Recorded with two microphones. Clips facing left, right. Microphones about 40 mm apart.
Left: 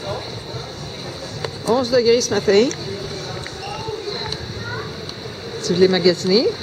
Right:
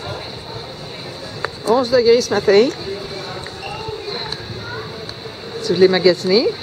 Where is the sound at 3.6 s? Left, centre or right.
Centre.